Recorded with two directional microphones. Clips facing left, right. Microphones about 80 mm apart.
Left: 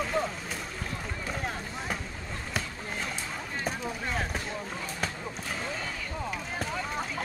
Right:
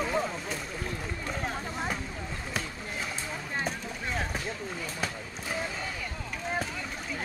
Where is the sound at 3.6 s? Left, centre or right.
Centre.